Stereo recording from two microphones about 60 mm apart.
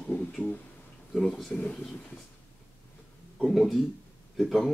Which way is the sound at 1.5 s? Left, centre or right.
Left.